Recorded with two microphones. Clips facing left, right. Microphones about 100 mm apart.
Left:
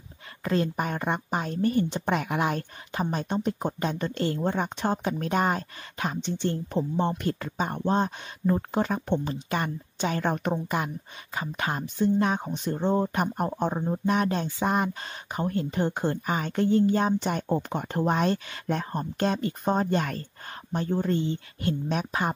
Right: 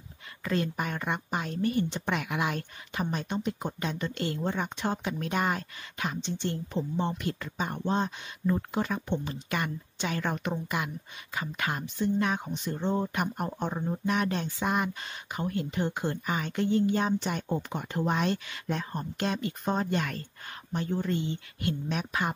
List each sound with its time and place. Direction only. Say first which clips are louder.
0.4 s a woman's voice: left 4 dB; 35° left (ahead or behind)